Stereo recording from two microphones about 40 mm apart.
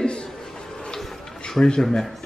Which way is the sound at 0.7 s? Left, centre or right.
Left.